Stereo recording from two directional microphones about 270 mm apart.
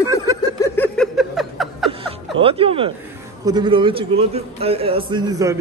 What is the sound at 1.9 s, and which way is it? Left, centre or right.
Chuckle, right.